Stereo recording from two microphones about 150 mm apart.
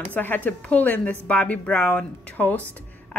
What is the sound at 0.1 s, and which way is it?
Speech, 10° left (ahead or behind).